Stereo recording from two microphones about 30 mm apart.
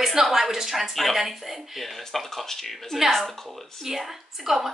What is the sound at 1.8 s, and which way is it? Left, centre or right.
A woman's voice, centre.